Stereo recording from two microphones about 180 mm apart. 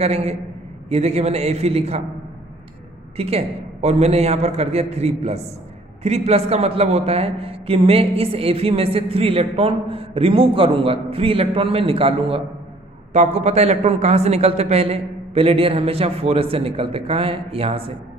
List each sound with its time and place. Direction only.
0.0 s a man's voice: 35° right (ahead or behind)
3.2 s a man's voice: 35° right (ahead or behind)